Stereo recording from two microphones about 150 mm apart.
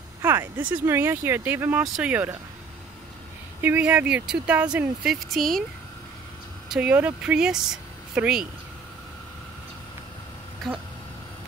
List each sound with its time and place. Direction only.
0.2 s speech: 15° right (ahead or behind)
3.6 s speech: 10° right (ahead or behind)
6.7 s speech: 10° right (ahead or behind)
10.6 s speech: centre (ahead or behind)